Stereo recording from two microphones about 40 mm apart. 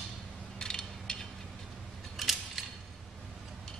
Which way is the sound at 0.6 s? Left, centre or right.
Centre.